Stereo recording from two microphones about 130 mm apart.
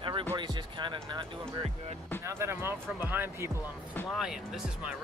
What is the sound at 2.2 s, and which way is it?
Speech, 20° right (ahead or behind).